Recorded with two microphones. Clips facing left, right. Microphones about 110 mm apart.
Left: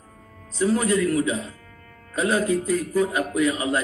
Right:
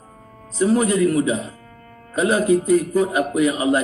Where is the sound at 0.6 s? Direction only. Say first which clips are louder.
Right 4 dB; 15° right (ahead or behind).